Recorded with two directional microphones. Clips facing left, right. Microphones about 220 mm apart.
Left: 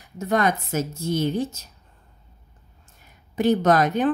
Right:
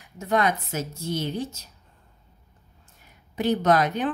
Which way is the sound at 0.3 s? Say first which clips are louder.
Left 2 dB; 45° left (ahead or behind).